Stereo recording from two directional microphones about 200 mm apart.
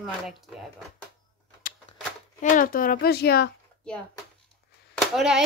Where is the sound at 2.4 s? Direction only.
45° left (ahead or behind).